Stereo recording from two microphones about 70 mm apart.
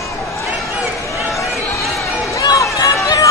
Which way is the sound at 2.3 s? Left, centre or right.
Left.